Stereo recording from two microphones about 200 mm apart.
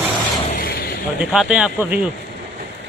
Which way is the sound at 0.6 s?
45° left (ahead or behind).